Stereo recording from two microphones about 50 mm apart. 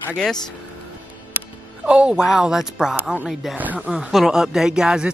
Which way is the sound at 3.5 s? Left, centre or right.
Right.